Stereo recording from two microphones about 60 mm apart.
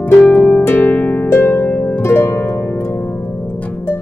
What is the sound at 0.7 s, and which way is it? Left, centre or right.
Harp, left.